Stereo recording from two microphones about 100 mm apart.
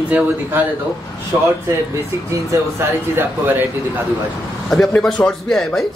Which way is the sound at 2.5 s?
25° right (ahead or behind).